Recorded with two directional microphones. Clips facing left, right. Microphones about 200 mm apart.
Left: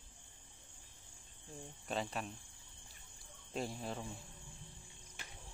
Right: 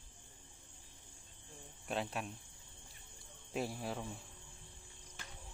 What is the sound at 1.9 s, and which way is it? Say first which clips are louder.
Speech: right 1 dB; centre (ahead or behind).